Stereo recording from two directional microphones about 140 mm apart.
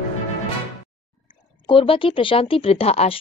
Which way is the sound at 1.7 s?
40° left (ahead or behind).